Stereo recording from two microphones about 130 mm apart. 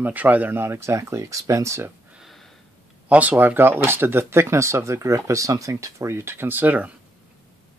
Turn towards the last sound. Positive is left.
turn(degrees=-15)  # may be behind; listen again after turning